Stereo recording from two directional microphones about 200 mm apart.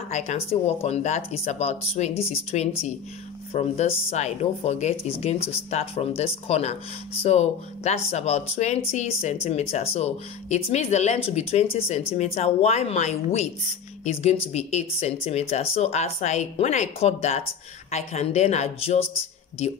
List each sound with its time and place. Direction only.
0.1 s speech: 35° left (ahead or behind)